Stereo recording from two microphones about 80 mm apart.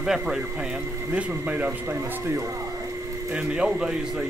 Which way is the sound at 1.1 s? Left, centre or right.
Centre.